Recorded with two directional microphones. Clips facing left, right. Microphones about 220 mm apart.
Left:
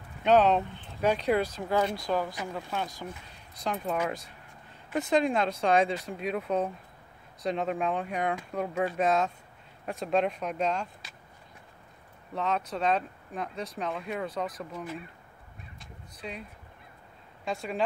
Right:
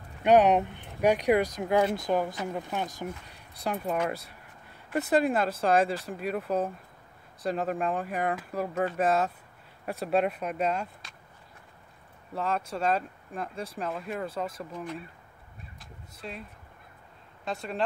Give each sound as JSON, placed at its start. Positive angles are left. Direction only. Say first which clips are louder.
{"t": 0.2, "sound": "speech", "louder": "right 2 dB", "side_deg": -15}
{"t": 12.4, "sound": "speech", "louder": "even", "side_deg": -5}
{"t": 17.5, "sound": "speech", "louder": "left 1 dB", "side_deg": 0}